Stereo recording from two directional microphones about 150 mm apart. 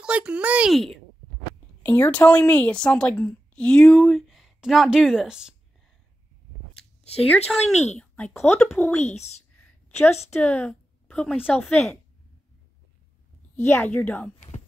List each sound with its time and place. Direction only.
0.0 s speech: 5° right (ahead or behind)
1.8 s a woman's voice: 10° left (ahead or behind)
6.7 s a sound: 5° left (ahead or behind)
8.0 s a woman's voice: 5° left (ahead or behind)
9.0 s speech: 45° left (ahead or behind)
9.6 s a sound: 15° left (ahead or behind)
10.3 s speech: 10° left (ahead or behind)
13.6 s a woman's voice: 15° left (ahead or behind)